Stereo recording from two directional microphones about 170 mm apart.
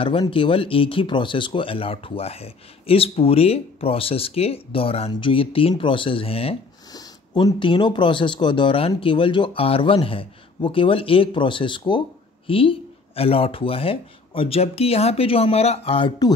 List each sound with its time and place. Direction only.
0.0 s speech: 30° left (ahead or behind)
6.9 s speech: 20° left (ahead or behind)